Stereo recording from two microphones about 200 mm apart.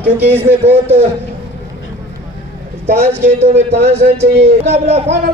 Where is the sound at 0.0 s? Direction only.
10° right (ahead or behind).